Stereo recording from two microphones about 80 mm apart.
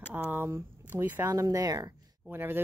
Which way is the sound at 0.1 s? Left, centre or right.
Right.